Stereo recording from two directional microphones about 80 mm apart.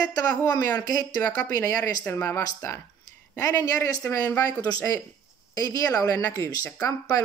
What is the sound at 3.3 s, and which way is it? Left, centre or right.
Speech, left.